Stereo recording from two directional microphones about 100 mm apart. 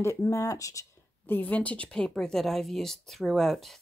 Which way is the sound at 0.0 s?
30° left (ahead or behind).